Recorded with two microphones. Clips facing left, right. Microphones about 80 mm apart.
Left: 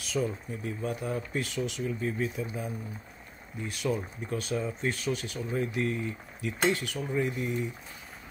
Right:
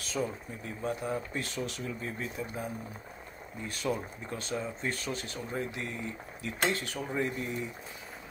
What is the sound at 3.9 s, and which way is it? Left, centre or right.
Speech, right.